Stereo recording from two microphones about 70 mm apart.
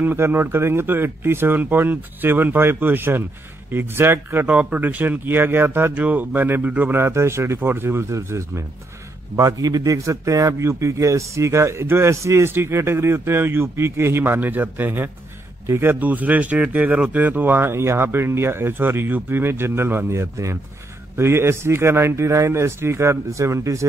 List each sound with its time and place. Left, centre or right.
0.0 s a man's voice: right
4.5 s speech: right
6.9 s a man's voice: right
9.4 s a man's voice: right
15.6 s a man's voice: right
16.0 s a man's voice: right